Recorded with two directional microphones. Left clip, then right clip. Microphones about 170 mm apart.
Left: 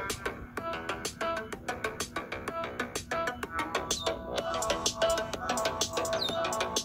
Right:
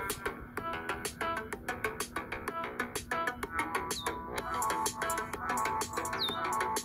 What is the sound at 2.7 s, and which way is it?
Music, 35° left (ahead or behind).